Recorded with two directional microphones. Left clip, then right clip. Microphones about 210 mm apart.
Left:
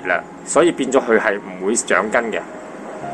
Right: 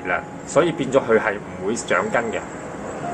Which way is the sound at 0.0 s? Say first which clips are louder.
Left 4 dB; 50° left (ahead or behind).